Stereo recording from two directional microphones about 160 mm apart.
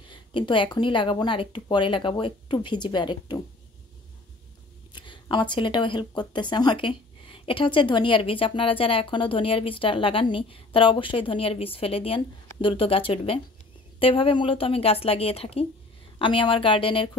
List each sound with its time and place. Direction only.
0.1 s speech: 30° left (ahead or behind)
4.9 s speech: 30° left (ahead or behind)